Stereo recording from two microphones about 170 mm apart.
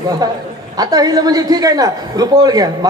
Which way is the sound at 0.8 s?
20° right (ahead or behind).